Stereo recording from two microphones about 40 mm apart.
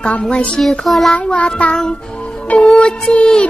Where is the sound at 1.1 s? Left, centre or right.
Left.